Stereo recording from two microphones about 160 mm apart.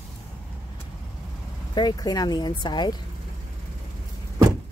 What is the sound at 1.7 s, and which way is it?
Speech, 25° left (ahead or behind).